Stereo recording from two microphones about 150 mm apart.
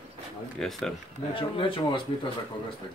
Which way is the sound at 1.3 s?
35° left (ahead or behind).